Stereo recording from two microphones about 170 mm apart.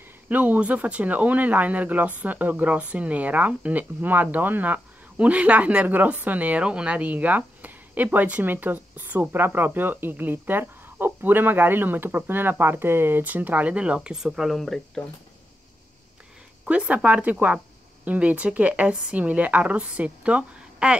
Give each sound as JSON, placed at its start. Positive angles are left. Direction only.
{"t": 0.3, "sound": "speech", "side_deg": -10}
{"t": 16.6, "sound": "speech", "side_deg": -5}